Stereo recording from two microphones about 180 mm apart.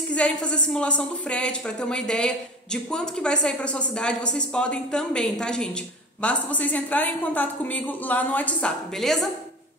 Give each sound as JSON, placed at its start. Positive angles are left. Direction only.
{"t": 0.1, "sound": "a woman's voice", "side_deg": 5}